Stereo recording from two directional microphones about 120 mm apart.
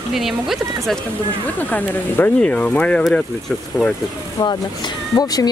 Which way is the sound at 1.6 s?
15° left (ahead or behind).